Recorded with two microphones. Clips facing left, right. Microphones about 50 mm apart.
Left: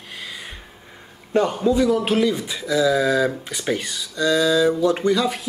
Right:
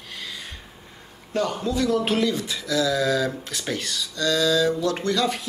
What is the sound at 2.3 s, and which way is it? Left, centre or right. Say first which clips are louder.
Speech: left 3 dB; centre.